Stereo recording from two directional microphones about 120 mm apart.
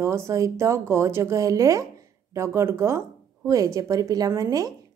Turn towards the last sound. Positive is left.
turn(degrees=-30)  # may be behind; listen again after turning